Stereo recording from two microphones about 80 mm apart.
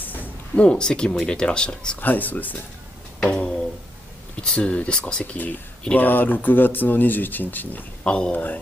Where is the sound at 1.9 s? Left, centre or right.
Left.